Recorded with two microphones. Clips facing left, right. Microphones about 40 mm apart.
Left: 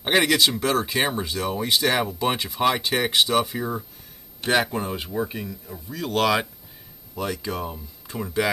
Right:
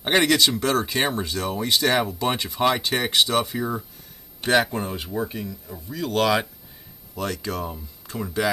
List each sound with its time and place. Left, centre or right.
0.0 s speech: centre